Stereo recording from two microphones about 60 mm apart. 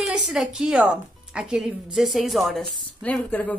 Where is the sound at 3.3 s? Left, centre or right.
Left.